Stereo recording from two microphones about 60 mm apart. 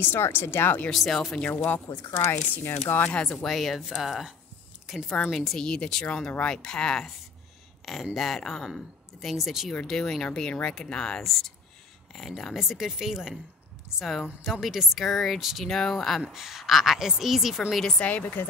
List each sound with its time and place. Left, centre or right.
0.0 s speech: left
0.8 s speech: centre
1.5 s speech: left
3.0 s speech: centre
3.4 s speech: centre
4.8 s a sound: centre
5.3 s speech: centre
7.8 s speech: centre
9.8 s speech: centre
17.9 s speech: left